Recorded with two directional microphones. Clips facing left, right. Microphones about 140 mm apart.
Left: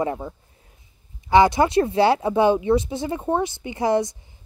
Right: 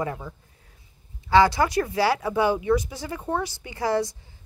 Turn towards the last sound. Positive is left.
turn(degrees=20)  # may be behind; listen again after turning